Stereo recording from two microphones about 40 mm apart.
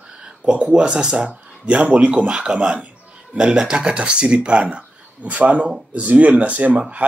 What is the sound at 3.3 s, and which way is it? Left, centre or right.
A man's voice, centre.